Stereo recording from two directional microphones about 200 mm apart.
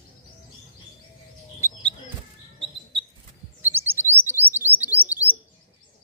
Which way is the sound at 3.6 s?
10° right (ahead or behind).